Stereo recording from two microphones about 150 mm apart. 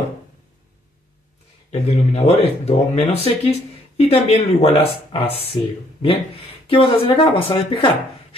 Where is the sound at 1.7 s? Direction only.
45° left (ahead or behind).